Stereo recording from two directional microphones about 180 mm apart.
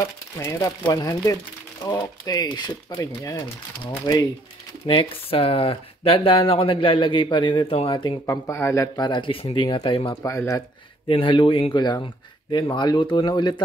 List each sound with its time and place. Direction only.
0.4 s speech: 20° left (ahead or behind)
8.3 s speech: 15° left (ahead or behind)
10.3 s speech: 15° left (ahead or behind)
11.1 s speech: 30° left (ahead or behind)